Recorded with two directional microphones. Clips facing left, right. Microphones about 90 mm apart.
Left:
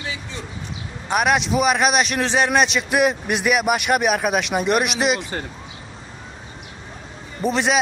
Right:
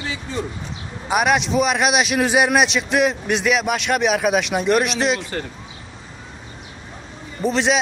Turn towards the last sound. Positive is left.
turn(degrees=0)  # may be behind; listen again after turning